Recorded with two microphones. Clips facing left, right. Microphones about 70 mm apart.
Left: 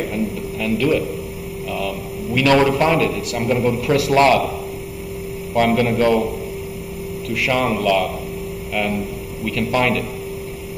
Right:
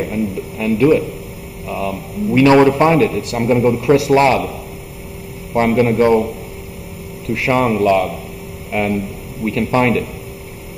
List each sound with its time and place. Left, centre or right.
0.6 s a man's voice: right
5.5 s a man's voice: right
7.2 s a man's voice: right